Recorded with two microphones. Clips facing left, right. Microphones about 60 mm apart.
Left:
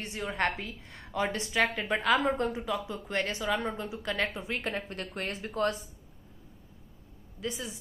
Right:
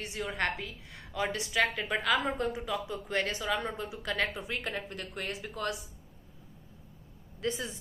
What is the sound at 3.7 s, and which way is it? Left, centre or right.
A woman's voice, left.